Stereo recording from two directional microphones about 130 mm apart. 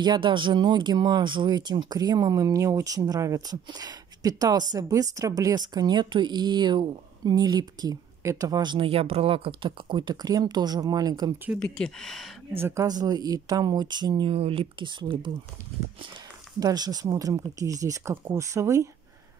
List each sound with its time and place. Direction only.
0.0 s speech: 35° right (ahead or behind)
11.6 s speech: 5° left (ahead or behind)
12.5 s speech: 20° right (ahead or behind)
12.8 s speech: 30° right (ahead or behind)
16.5 s speech: 30° right (ahead or behind)